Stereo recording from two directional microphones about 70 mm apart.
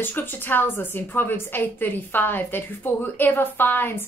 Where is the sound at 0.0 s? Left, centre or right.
Left.